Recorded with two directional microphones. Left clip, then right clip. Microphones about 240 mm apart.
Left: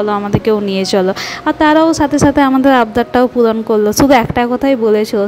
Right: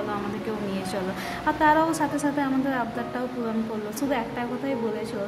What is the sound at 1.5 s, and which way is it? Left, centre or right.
A woman's voice, left.